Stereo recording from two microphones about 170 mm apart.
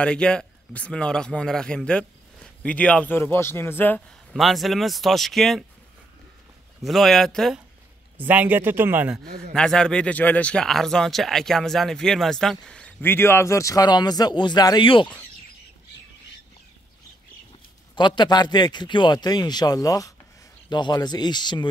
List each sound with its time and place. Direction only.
0.0 s a man's voice: 5° left (ahead or behind)
4.4 s speech: centre (ahead or behind)
6.8 s speech: centre (ahead or behind)
8.2 s speech: 10° right (ahead or behind)
9.5 s speech: 5° left (ahead or behind); by 15.1 s 30° left (ahead or behind)
17.9 s a man's voice: 25° left (ahead or behind)